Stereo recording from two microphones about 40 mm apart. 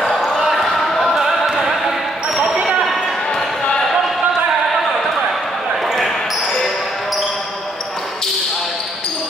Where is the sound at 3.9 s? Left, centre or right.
Centre.